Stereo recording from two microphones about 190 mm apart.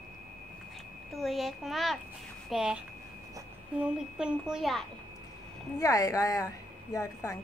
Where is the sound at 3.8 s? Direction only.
5° right (ahead or behind).